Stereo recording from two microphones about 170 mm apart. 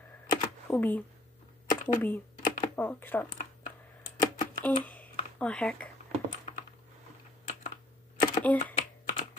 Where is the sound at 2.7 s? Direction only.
10° left (ahead or behind).